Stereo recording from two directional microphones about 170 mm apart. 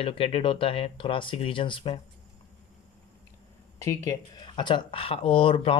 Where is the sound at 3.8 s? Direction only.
20° left (ahead or behind).